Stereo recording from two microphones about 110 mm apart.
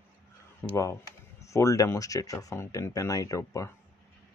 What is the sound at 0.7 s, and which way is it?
Speech, 30° left (ahead or behind).